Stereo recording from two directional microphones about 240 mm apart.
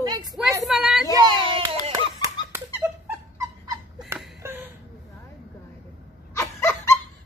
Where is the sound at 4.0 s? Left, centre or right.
Centre.